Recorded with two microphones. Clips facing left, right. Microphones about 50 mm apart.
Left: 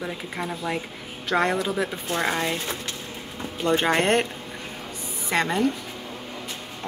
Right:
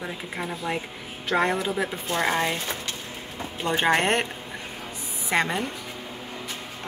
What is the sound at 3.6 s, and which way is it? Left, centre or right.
Speech, right.